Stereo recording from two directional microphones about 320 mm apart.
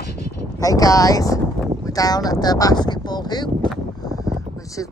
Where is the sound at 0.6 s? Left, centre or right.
Centre.